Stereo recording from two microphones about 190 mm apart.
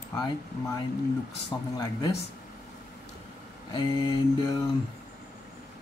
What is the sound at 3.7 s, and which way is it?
Speech, 20° left (ahead or behind).